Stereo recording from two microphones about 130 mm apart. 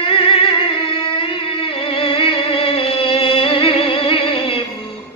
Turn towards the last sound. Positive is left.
turn(degrees=45)  # may be behind; listen again after turning